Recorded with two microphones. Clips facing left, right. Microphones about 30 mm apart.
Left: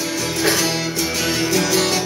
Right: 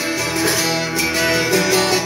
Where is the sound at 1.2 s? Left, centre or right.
Right.